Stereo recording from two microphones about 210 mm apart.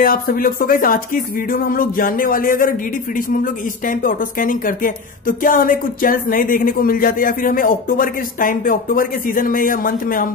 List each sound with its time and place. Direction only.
0.0 s speech: 45° left (ahead or behind)
3.8 s speech: 40° left (ahead or behind)